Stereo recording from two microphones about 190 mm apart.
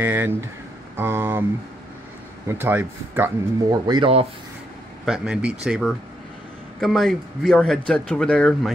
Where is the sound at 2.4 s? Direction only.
10° right (ahead or behind).